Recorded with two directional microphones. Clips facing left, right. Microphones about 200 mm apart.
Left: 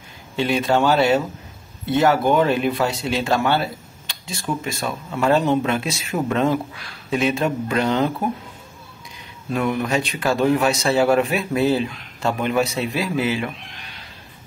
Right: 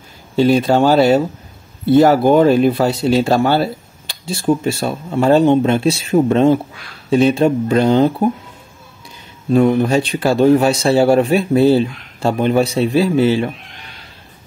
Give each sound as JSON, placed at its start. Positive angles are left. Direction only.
{"t": 0.4, "sound": "speech", "side_deg": -35}
{"t": 9.5, "sound": "speech", "side_deg": -30}